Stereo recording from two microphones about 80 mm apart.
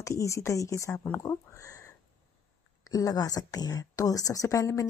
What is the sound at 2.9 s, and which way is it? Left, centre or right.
A woman's voice, left.